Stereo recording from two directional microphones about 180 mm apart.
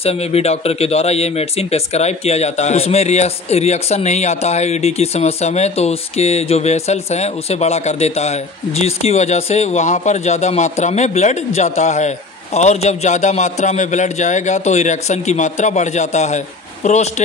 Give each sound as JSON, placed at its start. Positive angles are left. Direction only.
{"t": 0.0, "sound": "speech", "side_deg": 35}